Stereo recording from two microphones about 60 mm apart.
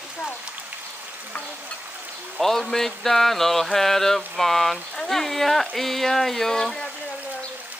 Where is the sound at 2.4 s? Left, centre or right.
Centre.